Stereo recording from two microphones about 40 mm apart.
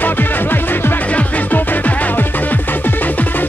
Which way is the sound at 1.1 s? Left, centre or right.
Left.